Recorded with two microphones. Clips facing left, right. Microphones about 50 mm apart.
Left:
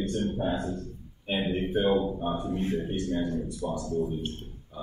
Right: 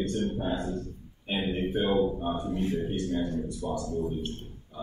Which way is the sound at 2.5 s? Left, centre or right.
Left.